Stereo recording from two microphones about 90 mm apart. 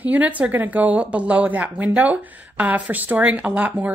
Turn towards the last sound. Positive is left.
turn(degrees=-20)  # may be behind; listen again after turning